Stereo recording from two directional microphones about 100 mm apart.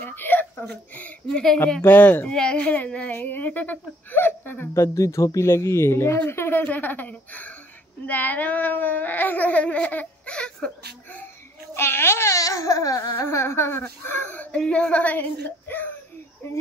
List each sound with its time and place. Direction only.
0.0 s a sound: 20° left (ahead or behind)
1.8 s speech: 20° left (ahead or behind)
11.7 s speech: 25° left (ahead or behind)